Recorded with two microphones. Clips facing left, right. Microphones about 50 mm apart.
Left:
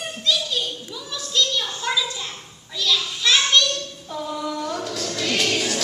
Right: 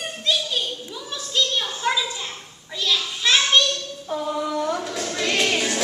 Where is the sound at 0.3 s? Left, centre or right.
Centre.